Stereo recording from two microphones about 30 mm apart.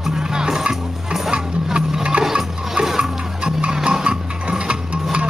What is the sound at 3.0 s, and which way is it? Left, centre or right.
Music, right.